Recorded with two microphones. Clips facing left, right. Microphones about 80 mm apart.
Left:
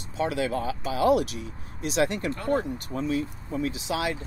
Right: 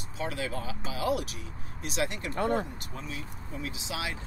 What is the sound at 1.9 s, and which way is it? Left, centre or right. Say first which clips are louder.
Speech: left 7 dB; left.